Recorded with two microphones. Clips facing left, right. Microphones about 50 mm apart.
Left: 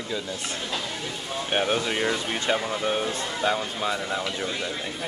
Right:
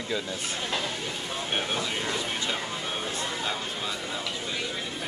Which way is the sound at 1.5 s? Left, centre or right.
Left.